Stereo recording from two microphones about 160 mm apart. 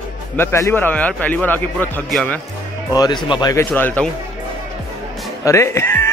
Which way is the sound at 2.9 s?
25° left (ahead or behind).